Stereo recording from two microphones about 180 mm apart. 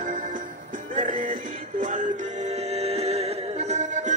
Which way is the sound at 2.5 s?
35° right (ahead or behind).